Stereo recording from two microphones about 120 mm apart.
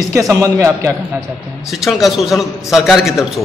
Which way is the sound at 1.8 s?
Centre (ahead or behind).